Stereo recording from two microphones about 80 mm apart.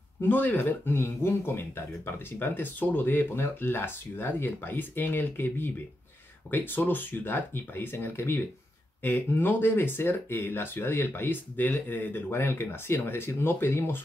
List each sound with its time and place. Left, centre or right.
0.2 s speech: left